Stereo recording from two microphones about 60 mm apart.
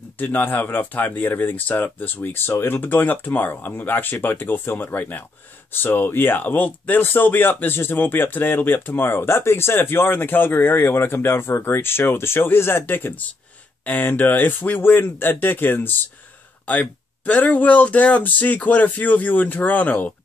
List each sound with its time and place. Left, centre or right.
0.2 s speech: left
17.2 s speech: left